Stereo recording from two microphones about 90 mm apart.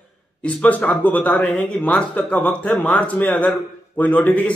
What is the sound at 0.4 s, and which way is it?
A man's voice, 10° left (ahead or behind).